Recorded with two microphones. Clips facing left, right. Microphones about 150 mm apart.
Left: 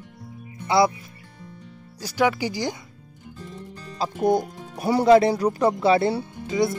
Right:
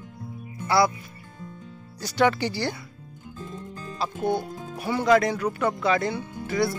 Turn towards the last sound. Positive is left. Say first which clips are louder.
# left 2 dB
turn(degrees=20)  # may be behind; listen again after turning